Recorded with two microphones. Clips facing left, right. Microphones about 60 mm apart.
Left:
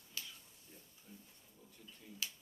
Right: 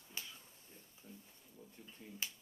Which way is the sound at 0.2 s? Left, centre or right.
Right.